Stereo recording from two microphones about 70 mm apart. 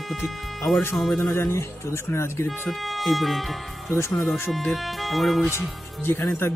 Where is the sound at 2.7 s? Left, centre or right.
Centre.